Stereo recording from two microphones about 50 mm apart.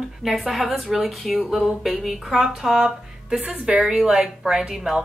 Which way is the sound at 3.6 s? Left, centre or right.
Centre.